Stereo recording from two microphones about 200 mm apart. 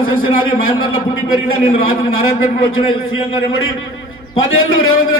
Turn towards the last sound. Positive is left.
turn(degrees=90)